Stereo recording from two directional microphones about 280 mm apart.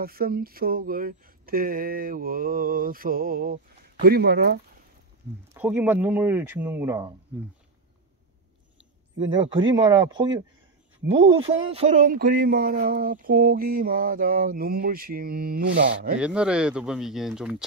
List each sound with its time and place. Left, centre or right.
0.0 s speech: right
5.5 s speech: centre
9.8 s speech: centre
11.4 s speech: right
16.2 s speech: centre